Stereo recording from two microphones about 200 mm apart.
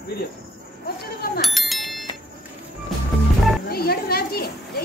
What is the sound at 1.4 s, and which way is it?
Bicycle bell, centre (ahead or behind).